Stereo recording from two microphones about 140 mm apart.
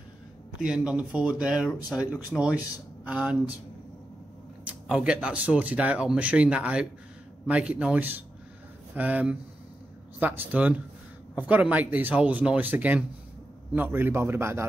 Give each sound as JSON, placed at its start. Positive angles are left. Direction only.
{"t": 0.6, "sound": "speech", "side_deg": -5}
{"t": 4.8, "sound": "speech", "side_deg": -5}